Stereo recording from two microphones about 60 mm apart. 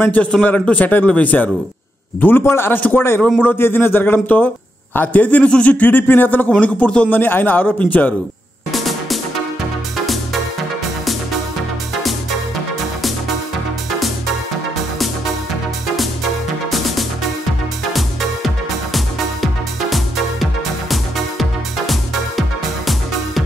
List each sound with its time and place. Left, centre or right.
0.0 s a man's voice: left
2.2 s a man's voice: left
7.2 s speech: left
8.7 s music: centre
12.0 s music: centre
13.9 s music: centre
18.9 s music: centre